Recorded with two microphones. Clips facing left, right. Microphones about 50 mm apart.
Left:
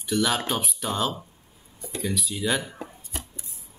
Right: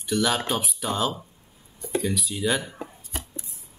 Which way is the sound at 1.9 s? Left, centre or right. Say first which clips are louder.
Right 3 dB; centre.